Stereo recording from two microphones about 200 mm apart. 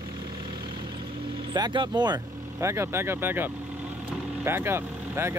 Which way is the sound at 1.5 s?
20° right (ahead or behind).